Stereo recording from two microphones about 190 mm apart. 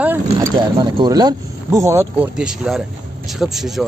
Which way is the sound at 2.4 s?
5° right (ahead or behind).